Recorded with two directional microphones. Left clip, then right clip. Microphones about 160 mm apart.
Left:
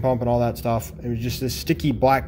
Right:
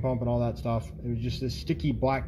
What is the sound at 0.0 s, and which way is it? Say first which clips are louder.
Speech: left 8 dB; 20° left (ahead or behind).